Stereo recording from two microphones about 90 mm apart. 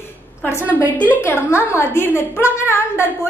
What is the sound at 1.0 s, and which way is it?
A woman's voice, 20° left (ahead or behind).